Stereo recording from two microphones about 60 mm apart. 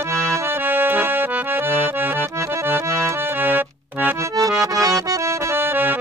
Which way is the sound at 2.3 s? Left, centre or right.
Right.